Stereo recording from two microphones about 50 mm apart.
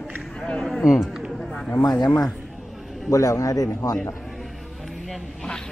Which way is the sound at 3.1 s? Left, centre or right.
Left.